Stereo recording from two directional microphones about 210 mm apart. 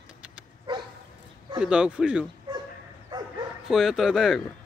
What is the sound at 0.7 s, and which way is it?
Dog, 25° right (ahead or behind).